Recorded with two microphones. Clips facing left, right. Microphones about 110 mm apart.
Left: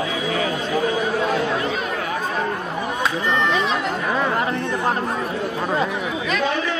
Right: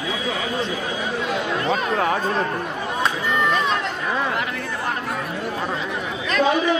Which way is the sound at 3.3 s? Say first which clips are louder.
Right 1 dB; centre (ahead or behind).